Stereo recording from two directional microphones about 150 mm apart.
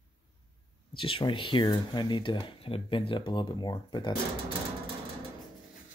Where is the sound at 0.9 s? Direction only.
35° left (ahead or behind).